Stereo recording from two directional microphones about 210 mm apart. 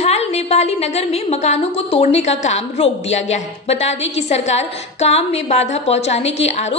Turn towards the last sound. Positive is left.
turn(degrees=30)  # may be behind; listen again after turning